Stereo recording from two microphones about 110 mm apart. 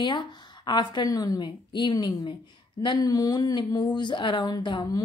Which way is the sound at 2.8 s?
40° left (ahead or behind).